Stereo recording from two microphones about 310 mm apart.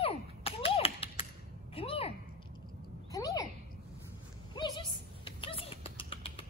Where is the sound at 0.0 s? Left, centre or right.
Centre.